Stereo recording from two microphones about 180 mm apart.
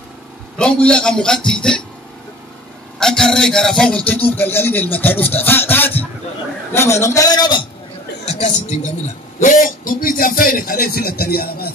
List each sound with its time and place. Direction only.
0.6 s a man's voice: 5° left (ahead or behind)
3.0 s a man's voice: 5° left (ahead or behind)
4.3 s music: 10° left (ahead or behind)
8.3 s speech: 40° left (ahead or behind); by 11.7 s 55° left (ahead or behind)